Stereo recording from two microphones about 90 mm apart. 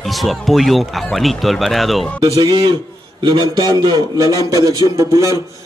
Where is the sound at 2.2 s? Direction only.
45° right (ahead or behind).